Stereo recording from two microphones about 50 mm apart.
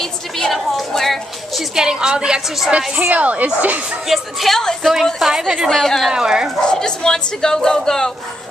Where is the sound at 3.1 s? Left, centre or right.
Right.